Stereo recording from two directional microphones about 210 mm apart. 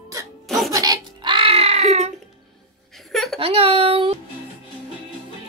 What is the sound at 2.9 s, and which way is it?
Laughter, centre (ahead or behind).